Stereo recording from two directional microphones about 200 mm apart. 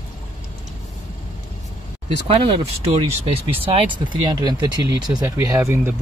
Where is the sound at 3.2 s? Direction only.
30° right (ahead or behind).